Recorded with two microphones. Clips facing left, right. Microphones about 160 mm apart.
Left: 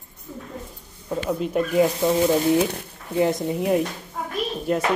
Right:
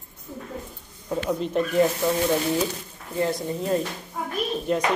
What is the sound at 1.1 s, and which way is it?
Speech, 5° left (ahead or behind).